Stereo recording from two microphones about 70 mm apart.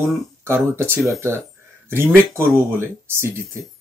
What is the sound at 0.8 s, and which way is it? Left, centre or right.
Speech, right.